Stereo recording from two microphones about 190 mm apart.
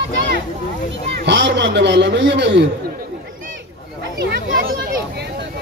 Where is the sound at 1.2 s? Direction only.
65° right (ahead or behind).